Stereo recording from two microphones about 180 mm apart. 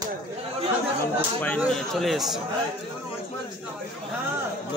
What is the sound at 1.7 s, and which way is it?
Speech, centre (ahead or behind).